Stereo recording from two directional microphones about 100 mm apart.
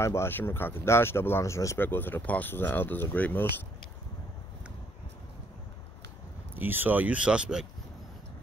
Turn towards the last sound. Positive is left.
turn(degrees=-10)  # may be behind; listen again after turning